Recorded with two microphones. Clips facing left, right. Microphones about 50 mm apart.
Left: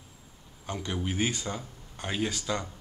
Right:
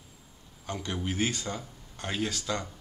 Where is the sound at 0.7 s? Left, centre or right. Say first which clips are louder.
Left 1 dB; centre.